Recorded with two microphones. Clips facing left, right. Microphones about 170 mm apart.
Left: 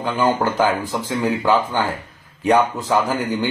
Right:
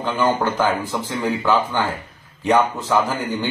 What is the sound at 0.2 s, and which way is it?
Speech, 40° left (ahead or behind).